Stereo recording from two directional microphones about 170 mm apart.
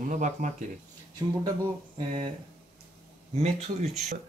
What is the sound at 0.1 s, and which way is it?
Speech, 45° right (ahead or behind).